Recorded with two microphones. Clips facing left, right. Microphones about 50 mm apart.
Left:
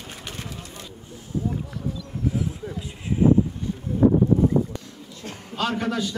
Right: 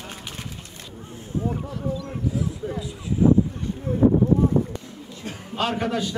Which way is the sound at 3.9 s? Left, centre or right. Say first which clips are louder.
Right 2 dB; right.